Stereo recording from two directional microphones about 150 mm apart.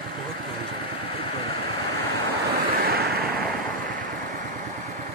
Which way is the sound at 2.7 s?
85° right.